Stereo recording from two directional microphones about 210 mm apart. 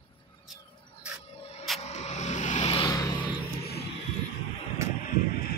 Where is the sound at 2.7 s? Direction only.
20° left (ahead or behind).